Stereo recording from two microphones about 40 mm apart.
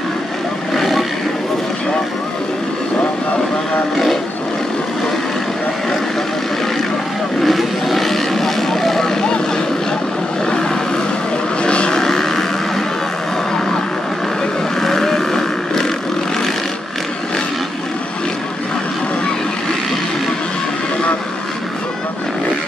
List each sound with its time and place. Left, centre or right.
0.7 s wild animals: centre
7.4 s vehicle: centre
10.4 s a sound: centre
11.6 s vehicle: left
12.0 s vehicle: centre
14.8 s vehicle: centre